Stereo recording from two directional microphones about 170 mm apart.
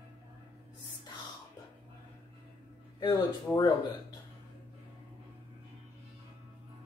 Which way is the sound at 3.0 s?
25° left (ahead or behind).